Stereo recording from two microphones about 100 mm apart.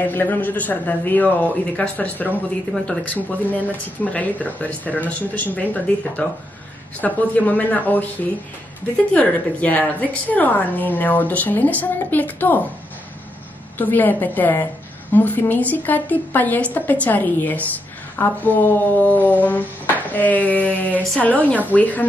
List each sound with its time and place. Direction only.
0.1 s a woman's voice: 20° left (ahead or behind)
13.7 s a woman's voice: 20° left (ahead or behind)